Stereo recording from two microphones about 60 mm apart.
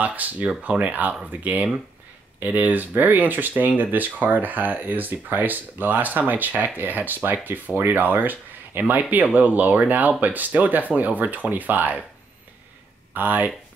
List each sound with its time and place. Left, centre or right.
0.0 s speech: right
13.1 s speech: right